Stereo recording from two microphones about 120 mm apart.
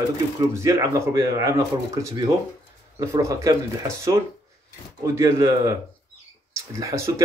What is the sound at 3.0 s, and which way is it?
Speech, 25° right (ahead or behind).